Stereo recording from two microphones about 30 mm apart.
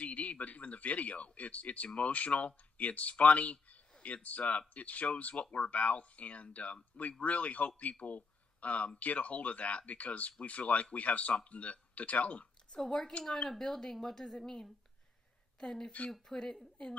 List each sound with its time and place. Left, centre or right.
0.0 s speech: left
12.9 s a woman's voice: left
14.4 s a woman's voice: left
16.8 s a woman's voice: left